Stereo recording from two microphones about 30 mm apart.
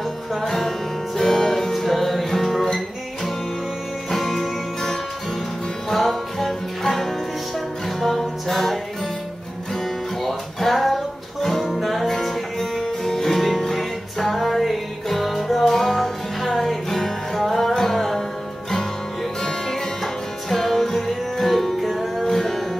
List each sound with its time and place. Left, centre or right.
0.5 s music: centre
4.1 s music: centre
5.9 s music: centre
8.5 s music: centre
10.2 s music: centre
19.4 s music: centre